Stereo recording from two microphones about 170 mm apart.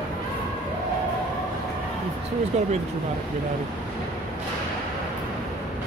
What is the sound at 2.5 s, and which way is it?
Speech, 40° right (ahead or behind).